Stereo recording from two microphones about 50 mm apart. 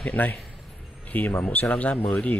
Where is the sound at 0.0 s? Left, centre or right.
Left.